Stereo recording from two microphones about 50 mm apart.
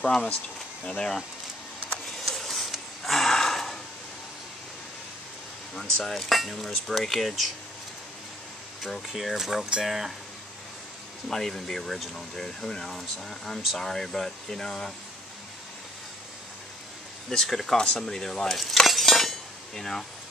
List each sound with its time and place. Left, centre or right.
0.0 s speech: centre
2.1 s a sound: centre
6.0 s speech: centre
8.8 s speech: centre
11.2 s speech: centre
17.3 s speech: centre
18.0 s cutlery: centre